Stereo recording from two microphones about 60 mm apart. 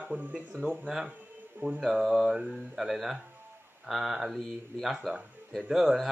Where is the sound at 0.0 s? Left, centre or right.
Right.